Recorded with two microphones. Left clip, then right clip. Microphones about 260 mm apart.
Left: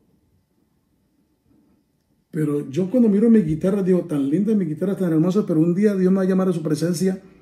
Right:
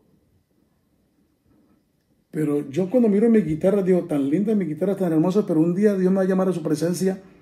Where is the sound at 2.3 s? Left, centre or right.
Right.